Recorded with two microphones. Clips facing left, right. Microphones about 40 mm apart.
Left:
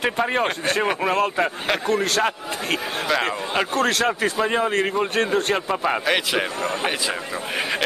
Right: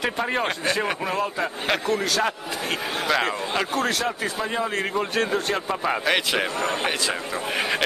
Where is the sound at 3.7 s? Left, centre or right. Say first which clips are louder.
Left 4 dB; left.